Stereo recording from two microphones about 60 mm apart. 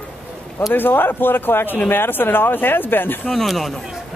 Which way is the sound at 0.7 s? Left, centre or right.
Left.